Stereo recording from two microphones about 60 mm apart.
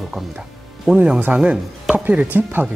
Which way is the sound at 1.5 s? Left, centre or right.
Centre.